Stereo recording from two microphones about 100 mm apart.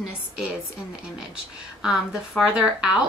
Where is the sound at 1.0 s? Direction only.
5° right (ahead or behind).